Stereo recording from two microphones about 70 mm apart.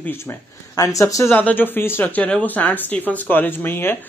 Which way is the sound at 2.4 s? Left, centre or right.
Left.